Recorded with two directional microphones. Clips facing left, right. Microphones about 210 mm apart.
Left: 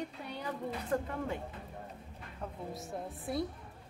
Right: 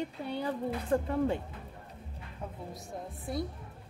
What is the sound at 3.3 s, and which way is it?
Speech, centre (ahead or behind).